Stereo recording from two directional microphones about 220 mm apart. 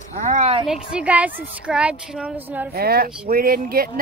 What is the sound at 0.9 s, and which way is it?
Speech, 5° right (ahead or behind).